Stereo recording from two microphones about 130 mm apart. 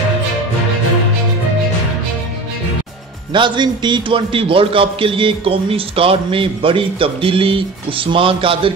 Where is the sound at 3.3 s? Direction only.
35° right (ahead or behind).